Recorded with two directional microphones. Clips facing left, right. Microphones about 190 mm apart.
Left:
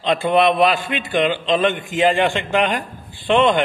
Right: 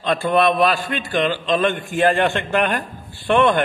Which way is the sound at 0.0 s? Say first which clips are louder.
Left 1 dB; 20° left (ahead or behind).